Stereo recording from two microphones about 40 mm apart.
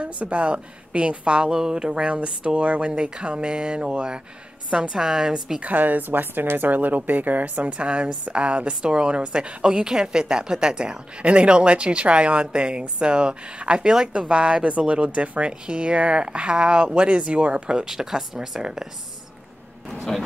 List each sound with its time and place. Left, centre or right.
0.0 s a woman's voice: right
4.9 s speech: centre
5.6 s a woman's voice: right
17.8 s speech: centre
19.9 s speech: centre